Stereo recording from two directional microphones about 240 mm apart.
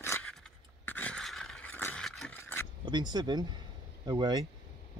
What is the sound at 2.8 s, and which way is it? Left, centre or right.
Speech, centre.